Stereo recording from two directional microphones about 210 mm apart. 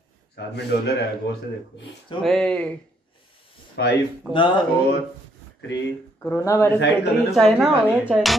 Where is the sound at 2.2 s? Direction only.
5° left (ahead or behind).